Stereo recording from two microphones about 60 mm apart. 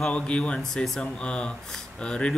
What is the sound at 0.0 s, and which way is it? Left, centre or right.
Speech, centre.